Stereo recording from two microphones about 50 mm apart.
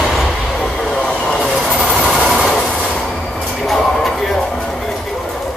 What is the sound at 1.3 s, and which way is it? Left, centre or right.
Train, centre.